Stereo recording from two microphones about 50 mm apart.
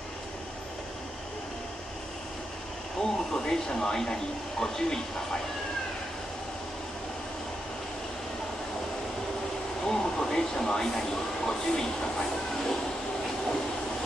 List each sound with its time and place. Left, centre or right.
3.0 s speech: centre
9.8 s speech: centre